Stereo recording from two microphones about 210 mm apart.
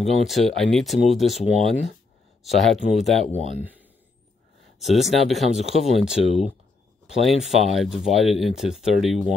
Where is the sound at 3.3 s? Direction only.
30° left (ahead or behind).